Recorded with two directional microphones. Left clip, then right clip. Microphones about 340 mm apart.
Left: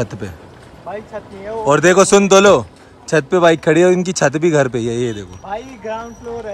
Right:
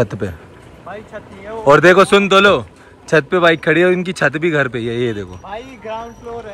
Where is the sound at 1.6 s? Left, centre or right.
Centre.